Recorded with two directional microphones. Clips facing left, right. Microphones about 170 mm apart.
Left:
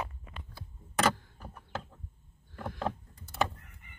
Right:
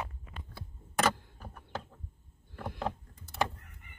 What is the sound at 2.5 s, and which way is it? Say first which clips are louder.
Rowboat: left 1 dB; 10° right (ahead or behind).